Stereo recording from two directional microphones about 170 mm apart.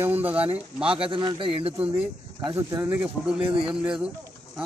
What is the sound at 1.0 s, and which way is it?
Speech, 30° right (ahead or behind).